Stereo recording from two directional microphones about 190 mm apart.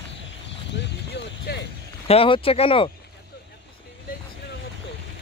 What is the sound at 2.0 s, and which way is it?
Speech, 30° left (ahead or behind).